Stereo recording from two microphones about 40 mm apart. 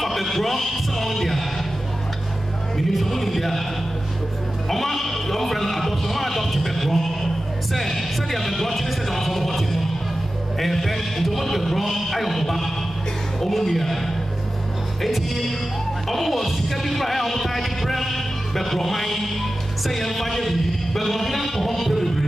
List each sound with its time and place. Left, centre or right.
0.0 s speech: centre
2.9 s speech: centre
4.6 s speech: centre
15.0 s speech: centre